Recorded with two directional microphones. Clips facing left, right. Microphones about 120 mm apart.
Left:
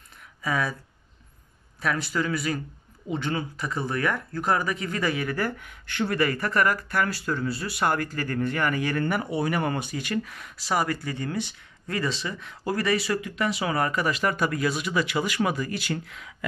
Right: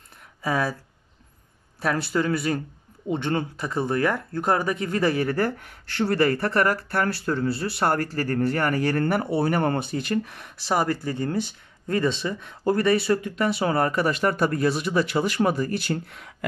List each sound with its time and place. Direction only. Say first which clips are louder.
0.4 s speech: right 3 dB; 30° right (ahead or behind)
2.1 s speech: right 5 dB; 35° right (ahead or behind)
3.1 s speech: right 4 dB; 50° right (ahead or behind)
3.6 s speech: right 3 dB; 25° right (ahead or behind)
8.9 s speech: right 3 dB; 45° right (ahead or behind)
9.2 s speech: right 4 dB; 35° right (ahead or behind)
12.0 s speech: right 4 dB; 25° right (ahead or behind)